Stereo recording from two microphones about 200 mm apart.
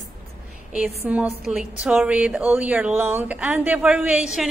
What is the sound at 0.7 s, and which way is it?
A woman's voice, 5° right (ahead or behind).